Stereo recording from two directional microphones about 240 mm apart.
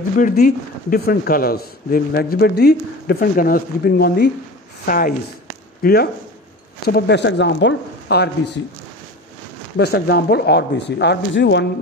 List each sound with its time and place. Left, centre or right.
0.2 s speech: left
9.8 s speech: left